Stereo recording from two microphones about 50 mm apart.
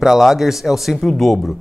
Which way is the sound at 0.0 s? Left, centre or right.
Centre.